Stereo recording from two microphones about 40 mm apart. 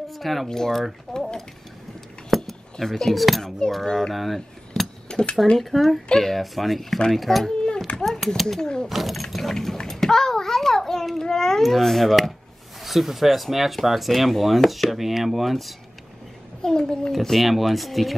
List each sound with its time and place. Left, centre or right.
0.1 s speech: centre
2.3 s a sound: centre
3.2 s speech: centre
3.4 s speech: centre
4.1 s speech: centre
5.0 s cutlery: left
5.6 s speech: centre
7.6 s a sound: left
8.0 s speech: centre
8.5 s speech: left
8.8 s a child's voice: centre
16.6 s speech: centre
17.1 s speech: centre